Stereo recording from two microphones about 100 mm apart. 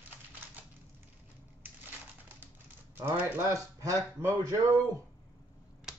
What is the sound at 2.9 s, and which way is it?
Speech, 20° right (ahead or behind).